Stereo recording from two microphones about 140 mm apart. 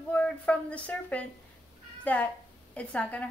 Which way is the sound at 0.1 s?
10° left (ahead or behind).